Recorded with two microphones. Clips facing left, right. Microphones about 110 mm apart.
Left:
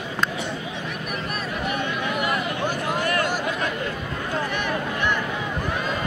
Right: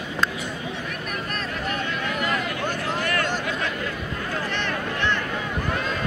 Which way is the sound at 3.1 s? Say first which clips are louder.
Left 2 dB; 15° left (ahead or behind).